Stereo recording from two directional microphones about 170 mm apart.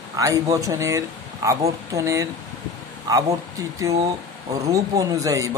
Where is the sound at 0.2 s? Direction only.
20° right (ahead or behind).